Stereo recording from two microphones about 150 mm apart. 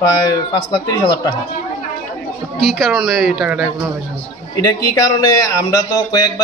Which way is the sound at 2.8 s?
Centre (ahead or behind).